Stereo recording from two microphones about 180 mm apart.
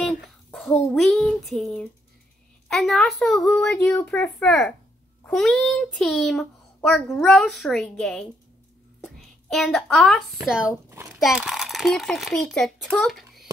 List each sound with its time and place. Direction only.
0.0 s a child's voice: centre (ahead or behind)
10.9 s a sound: 15° right (ahead or behind)
11.1 s a child's voice: centre (ahead or behind)